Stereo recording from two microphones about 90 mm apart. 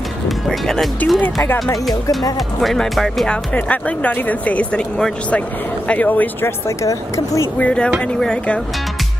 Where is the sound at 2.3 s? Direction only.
Centre (ahead or behind).